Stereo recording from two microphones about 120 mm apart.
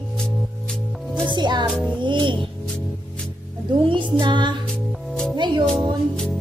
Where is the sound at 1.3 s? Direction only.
40° right (ahead or behind).